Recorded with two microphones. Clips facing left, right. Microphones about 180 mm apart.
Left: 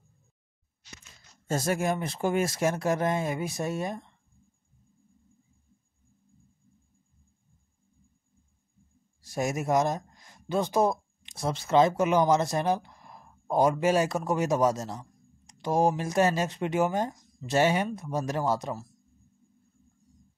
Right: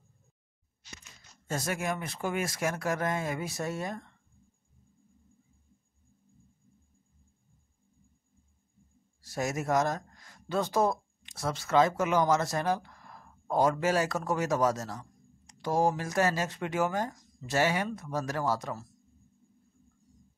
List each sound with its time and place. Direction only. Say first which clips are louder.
1.5 s speech: left 5 dB; 30° left (ahead or behind)
9.2 s speech: left 3 dB; 15° left (ahead or behind)